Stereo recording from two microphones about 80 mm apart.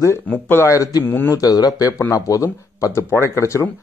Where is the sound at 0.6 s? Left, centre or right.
Left.